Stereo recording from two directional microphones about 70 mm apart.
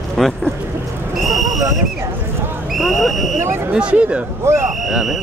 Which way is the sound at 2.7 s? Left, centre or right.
Centre.